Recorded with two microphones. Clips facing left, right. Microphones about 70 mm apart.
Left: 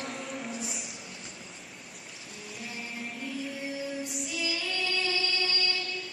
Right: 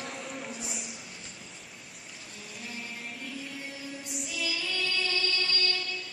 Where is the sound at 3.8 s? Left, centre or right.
Centre.